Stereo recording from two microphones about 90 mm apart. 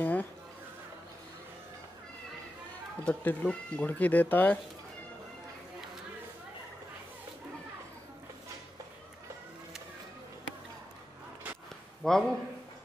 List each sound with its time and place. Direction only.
0.0 s a sound: 20° left (ahead or behind)
3.0 s speech: 15° left (ahead or behind)
12.0 s a man's voice: 5° left (ahead or behind)